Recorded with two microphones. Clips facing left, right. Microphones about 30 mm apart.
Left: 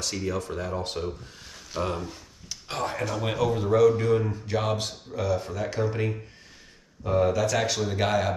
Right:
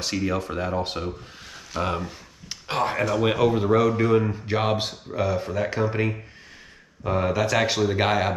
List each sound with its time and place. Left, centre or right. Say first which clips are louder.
0.0 s speech: right 4 dB; right